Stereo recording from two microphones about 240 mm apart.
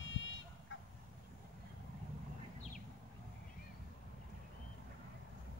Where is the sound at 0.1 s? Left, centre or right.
Left.